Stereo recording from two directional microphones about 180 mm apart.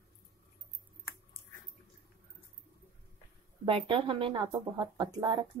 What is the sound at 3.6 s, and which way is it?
Speech, 30° right (ahead or behind).